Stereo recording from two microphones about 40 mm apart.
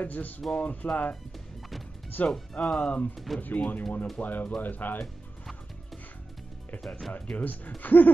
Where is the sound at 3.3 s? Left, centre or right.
Left.